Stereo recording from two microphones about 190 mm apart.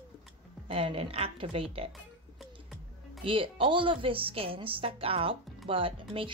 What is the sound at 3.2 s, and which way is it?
A woman's voice, 30° right (ahead or behind).